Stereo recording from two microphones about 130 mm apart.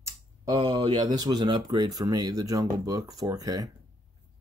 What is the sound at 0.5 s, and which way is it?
Speech, 40° right (ahead or behind).